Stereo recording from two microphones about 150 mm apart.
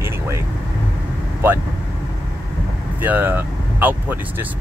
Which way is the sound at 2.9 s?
10° right (ahead or behind).